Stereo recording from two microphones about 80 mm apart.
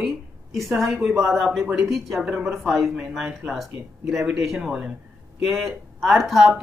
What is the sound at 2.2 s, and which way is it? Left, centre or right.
Speech, centre.